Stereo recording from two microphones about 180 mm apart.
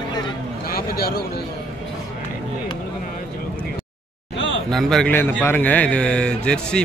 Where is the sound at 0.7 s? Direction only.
55° left (ahead or behind).